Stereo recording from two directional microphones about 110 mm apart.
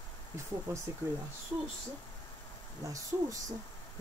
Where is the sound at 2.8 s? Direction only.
30° right (ahead or behind).